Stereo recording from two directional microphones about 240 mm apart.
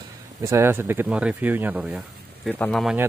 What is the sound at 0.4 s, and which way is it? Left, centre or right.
Speech, centre.